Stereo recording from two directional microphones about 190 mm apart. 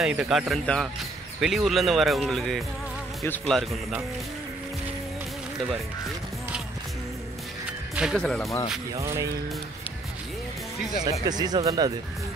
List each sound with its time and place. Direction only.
0.0 s speech: 5° right (ahead or behind)
7.9 s speech: 5° right (ahead or behind)
9.0 s music: 15° right (ahead or behind)
11.2 s speech: 20° right (ahead or behind)